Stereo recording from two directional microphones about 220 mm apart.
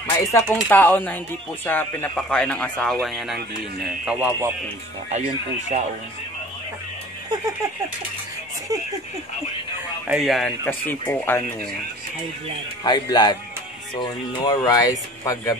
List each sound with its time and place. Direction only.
0.0 s music: 10° left (ahead or behind)
0.6 s speech: 5° left (ahead or behind); by 4.6 s 10° right (ahead or behind)
5.1 s speech: 30° right (ahead or behind)
10.0 s speech: centre (ahead or behind)
10.6 s speech: 10° left (ahead or behind)
12.8 s speech: 20° left (ahead or behind)